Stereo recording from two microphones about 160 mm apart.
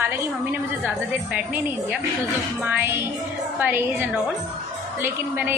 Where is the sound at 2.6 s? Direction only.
15° right (ahead or behind).